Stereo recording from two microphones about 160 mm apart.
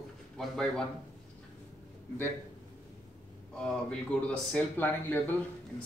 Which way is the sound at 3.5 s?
5° left (ahead or behind).